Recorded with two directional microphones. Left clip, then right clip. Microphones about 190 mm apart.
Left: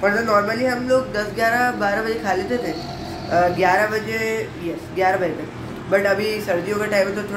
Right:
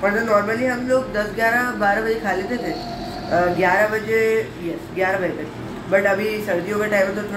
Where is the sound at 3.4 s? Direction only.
15° left (ahead or behind).